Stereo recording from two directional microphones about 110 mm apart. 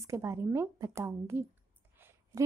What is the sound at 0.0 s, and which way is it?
A woman's voice, 25° right (ahead or behind).